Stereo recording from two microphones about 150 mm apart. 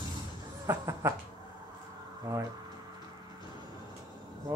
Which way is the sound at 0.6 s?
15° right (ahead or behind).